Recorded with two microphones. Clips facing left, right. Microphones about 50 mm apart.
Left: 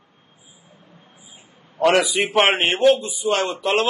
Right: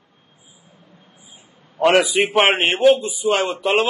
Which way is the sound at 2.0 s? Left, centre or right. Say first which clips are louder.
Right 3 dB; right.